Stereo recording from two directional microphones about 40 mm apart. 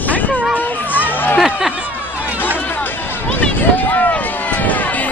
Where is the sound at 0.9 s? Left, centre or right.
Left.